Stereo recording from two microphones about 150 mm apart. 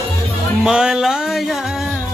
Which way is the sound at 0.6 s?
5° right (ahead or behind).